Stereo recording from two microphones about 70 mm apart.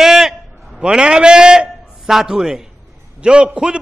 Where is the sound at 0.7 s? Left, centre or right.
Centre.